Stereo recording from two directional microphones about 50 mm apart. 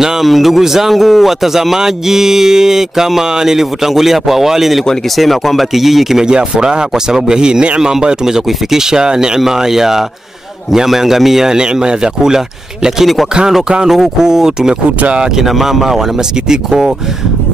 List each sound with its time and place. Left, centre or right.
0.0 s speech: centre
6.2 s speech: centre
15.0 s speech: right
15.3 s speech: centre